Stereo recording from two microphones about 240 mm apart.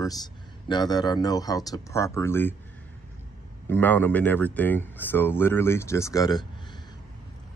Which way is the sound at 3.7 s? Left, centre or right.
Centre.